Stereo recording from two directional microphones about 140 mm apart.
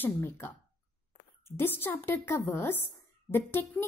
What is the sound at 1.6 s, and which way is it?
A woman's voice, 15° left (ahead or behind).